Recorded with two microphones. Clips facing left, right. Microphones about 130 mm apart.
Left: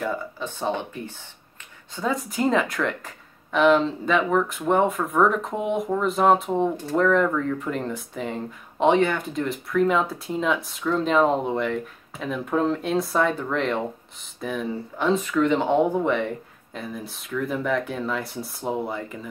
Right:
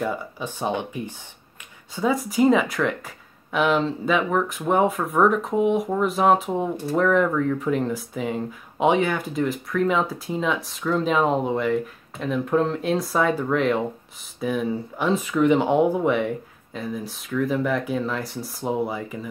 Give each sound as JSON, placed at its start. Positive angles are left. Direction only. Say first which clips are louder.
{"t": 0.0, "sound": "speech", "louder": "right 1 dB", "side_deg": -10}